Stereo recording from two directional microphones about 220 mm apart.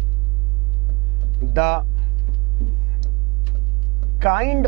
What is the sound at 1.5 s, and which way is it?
Speech, 15° right (ahead or behind).